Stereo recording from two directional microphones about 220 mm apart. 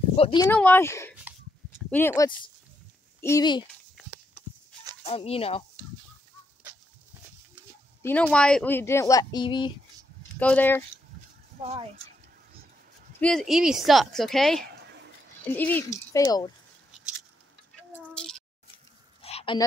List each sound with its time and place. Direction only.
0.1 s speech: 25° left (ahead or behind)
0.5 s speech: 10° left (ahead or behind)
5.0 s speech: 25° left (ahead or behind)
8.0 s speech: 5° left (ahead or behind)
10.4 s speech: 5° left (ahead or behind)
13.2 s a woman's voice: 5° left (ahead or behind)
14.6 s a sound: 50° right (ahead or behind)
15.4 s speech: 10° left (ahead or behind)
17.9 s a sound: 5° left (ahead or behind)
19.2 s a sound: 25° left (ahead or behind)